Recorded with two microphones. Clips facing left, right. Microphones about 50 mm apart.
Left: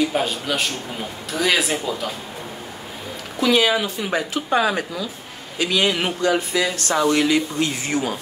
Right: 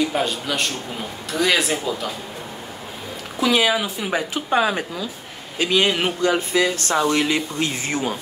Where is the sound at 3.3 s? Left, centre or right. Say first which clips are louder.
Left 1 dB; centre; by 7.3 s right.